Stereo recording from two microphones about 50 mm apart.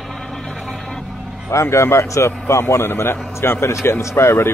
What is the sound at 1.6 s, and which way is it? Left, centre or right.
A man's voice, left.